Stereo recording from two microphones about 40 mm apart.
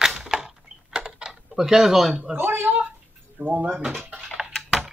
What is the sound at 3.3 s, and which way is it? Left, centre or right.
Speech, right.